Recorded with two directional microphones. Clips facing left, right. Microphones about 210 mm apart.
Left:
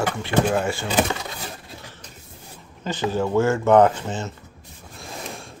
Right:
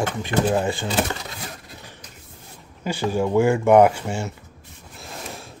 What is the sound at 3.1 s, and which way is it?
Speech, 15° right (ahead or behind).